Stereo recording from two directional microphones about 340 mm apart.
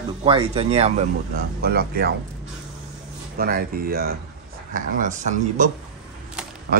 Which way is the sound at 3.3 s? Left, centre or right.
Right.